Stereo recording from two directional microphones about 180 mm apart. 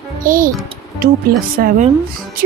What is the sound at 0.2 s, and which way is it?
A child's voice, 50° right (ahead or behind).